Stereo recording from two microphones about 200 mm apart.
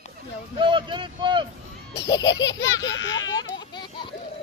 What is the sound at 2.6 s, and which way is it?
Baby laughter, 65° left (ahead or behind).